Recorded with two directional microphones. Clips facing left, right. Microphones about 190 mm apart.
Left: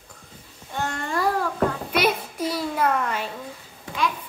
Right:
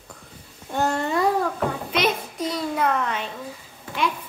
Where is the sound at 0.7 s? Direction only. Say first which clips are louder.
Right 6 dB; 35° right (ahead or behind).